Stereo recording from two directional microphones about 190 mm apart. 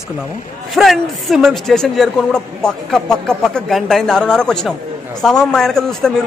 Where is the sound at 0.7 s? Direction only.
Centre (ahead or behind).